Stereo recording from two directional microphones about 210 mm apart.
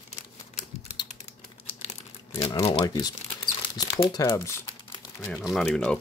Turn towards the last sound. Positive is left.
turn(degrees=5)  # may be behind; listen again after turning